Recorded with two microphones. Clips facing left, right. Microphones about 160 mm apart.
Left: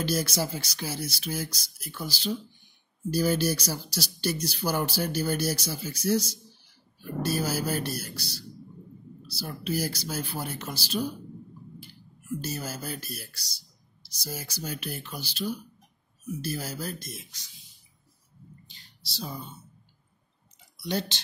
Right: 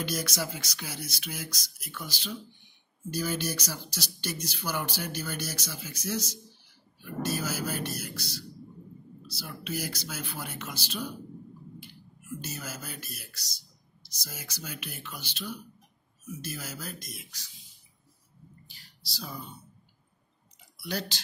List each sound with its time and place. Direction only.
0.0 s speech: 30° left (ahead or behind)
9.5 s speech: 35° left (ahead or behind)
12.4 s speech: 30° left (ahead or behind)
18.7 s a sound: 25° left (ahead or behind)
20.7 s speech: 25° left (ahead or behind)